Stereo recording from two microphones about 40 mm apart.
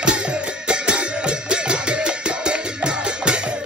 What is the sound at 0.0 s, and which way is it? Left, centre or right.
Music, right.